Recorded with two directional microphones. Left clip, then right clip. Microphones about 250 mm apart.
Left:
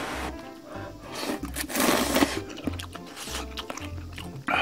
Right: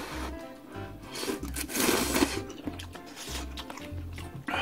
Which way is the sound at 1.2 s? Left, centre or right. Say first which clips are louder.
Left 3 dB; left.